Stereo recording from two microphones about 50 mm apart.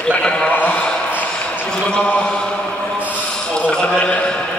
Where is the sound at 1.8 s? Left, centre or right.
Centre.